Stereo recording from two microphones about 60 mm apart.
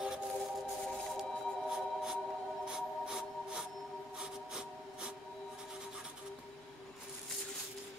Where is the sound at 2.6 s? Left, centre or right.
Centre.